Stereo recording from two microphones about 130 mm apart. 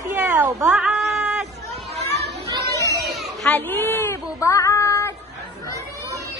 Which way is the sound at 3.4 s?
15° left (ahead or behind).